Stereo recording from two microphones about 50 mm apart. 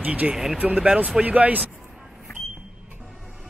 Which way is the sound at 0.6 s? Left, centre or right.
Right.